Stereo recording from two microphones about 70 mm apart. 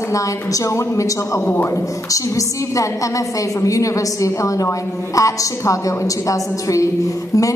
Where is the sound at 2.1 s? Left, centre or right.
Left.